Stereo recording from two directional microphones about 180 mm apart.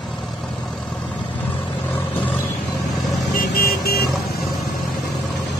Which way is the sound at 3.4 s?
55° left (ahead or behind).